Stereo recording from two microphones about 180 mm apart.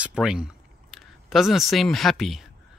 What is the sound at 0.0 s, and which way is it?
Speech, 5° right (ahead or behind).